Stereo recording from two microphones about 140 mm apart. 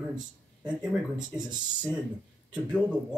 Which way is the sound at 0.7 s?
5° right (ahead or behind).